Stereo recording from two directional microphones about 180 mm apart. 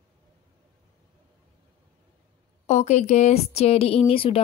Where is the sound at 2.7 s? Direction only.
40° left (ahead or behind).